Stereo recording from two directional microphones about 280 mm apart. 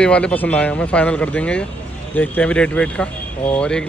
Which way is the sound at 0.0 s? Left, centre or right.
Centre.